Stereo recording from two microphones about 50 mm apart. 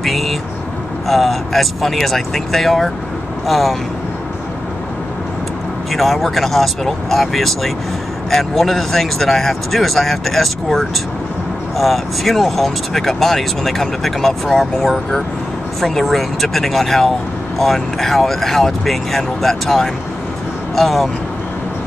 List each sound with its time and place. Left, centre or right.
0.0 s vehicle: centre
1.0 s speech: centre
5.9 s speech: centre
15.8 s speech: centre